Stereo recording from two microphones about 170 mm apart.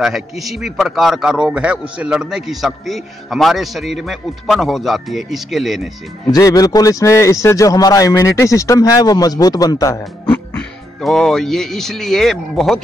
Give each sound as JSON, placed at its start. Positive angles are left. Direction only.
{"t": 0.0, "sound": "speech", "side_deg": 0}
{"t": 6.3, "sound": "a man's voice", "side_deg": 20}
{"t": 10.3, "sound": "speech", "side_deg": 5}